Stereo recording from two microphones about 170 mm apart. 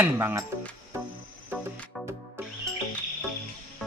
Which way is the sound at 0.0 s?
15° right (ahead or behind).